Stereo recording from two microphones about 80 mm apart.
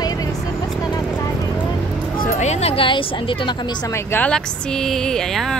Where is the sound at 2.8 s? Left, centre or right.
Left.